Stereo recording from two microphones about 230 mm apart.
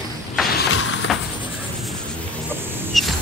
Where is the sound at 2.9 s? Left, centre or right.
Centre.